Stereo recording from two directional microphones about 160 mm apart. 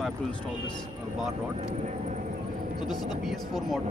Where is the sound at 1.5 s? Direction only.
45° right (ahead or behind).